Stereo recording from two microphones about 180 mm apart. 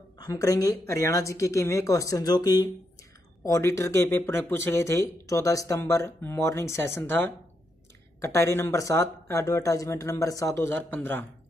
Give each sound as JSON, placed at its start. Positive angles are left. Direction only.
{"t": 0.2, "sound": "speech", "side_deg": 15}